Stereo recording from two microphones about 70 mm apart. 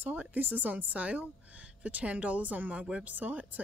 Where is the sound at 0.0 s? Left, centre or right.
Right.